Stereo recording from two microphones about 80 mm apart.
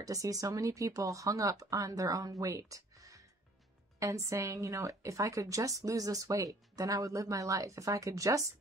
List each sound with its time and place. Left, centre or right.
0.0 s a woman's voice: right